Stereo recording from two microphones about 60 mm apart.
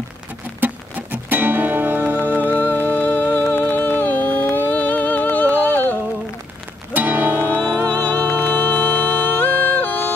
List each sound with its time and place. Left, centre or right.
0.6 s music: right
2.7 s music: left
6.9 s music: right
7.6 s music: centre
8.0 s music: left